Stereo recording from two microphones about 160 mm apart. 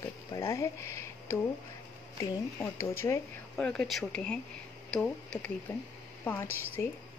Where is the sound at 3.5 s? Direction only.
5° left (ahead or behind).